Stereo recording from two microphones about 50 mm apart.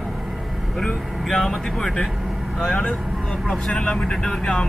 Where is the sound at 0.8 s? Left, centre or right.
Centre.